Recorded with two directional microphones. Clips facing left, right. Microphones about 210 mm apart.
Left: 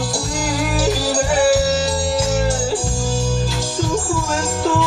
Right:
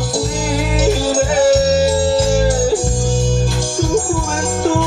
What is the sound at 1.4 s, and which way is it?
Music, 20° right (ahead or behind).